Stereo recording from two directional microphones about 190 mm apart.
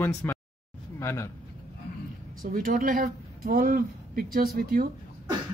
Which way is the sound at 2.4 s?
45° right (ahead or behind).